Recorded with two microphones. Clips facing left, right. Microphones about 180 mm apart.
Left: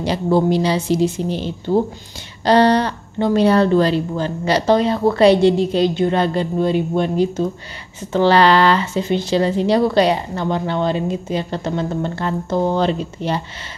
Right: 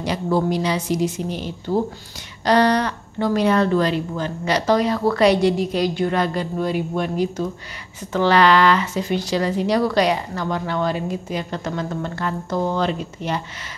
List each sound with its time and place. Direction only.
0.0 s speech: 25° left (ahead or behind)